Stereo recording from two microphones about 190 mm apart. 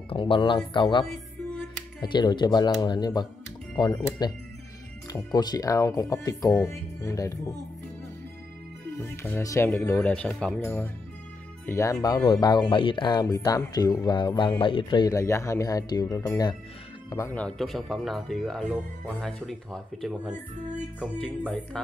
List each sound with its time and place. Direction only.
0.1 s speech: 25° left (ahead or behind)
9.1 s speech: 15° left (ahead or behind)
21.7 s speech: 5° left (ahead or behind)